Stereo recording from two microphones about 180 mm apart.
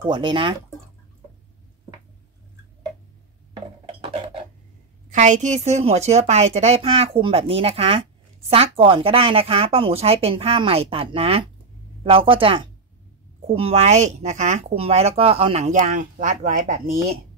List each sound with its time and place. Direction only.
0.0 s speech: 25° right (ahead or behind)
3.5 s dishes: 30° right (ahead or behind)
5.1 s speech: 40° right (ahead or behind)